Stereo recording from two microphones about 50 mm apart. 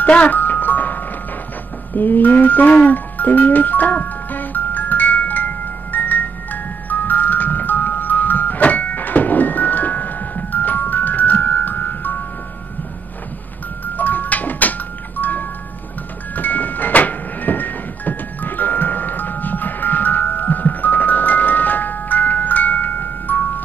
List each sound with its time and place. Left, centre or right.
0.0 s music: left
13.9 s music: left